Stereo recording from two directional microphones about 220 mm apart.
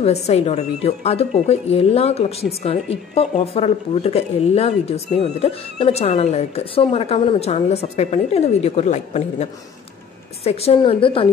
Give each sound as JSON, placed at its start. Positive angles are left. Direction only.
{"t": 0.0, "sound": "speech", "side_deg": 30}